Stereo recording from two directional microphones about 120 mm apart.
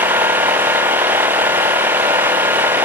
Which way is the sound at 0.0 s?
15° right (ahead or behind).